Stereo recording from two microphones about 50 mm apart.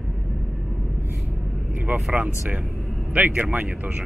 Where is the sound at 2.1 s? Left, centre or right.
Right.